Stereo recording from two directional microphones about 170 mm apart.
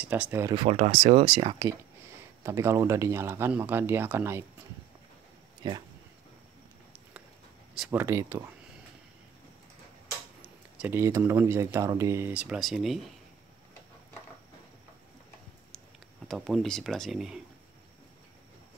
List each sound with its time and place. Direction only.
0.0 s speech: 10° right (ahead or behind)
0.6 s speech: 40° right (ahead or behind); by 4.5 s 15° right (ahead or behind)
5.6 s speech: 25° right (ahead or behind)
7.9 s speech: 15° right (ahead or behind)
10.8 s speech: 15° right (ahead or behind)
16.3 s speech: centre (ahead or behind)